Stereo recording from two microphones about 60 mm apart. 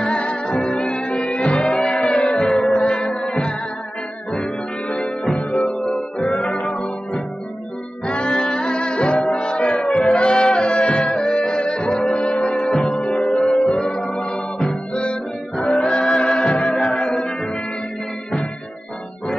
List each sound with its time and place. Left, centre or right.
0.0 s music: centre
4.9 s music: centre
8.1 s music: centre
9.8 s music: centre
10.1 s music: centre
15.9 s music: centre